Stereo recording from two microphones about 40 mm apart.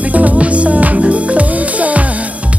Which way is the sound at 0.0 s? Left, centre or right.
Right.